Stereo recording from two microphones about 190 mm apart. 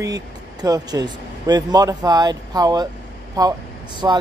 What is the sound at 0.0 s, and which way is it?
Speech, 20° right (ahead or behind).